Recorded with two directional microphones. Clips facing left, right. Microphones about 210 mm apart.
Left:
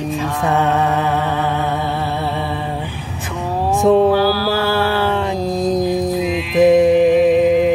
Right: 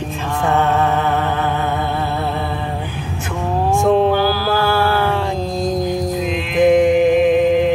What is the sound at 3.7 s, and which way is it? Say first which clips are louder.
Music: left 2 dB; 20° left (ahead or behind).